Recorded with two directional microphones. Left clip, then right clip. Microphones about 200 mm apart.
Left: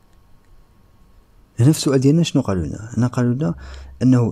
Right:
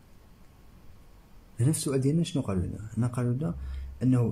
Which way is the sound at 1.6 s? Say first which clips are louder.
Left 12 dB; 45° left (ahead or behind).